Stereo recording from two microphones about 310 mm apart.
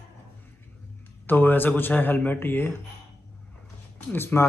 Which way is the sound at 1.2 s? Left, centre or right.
Centre.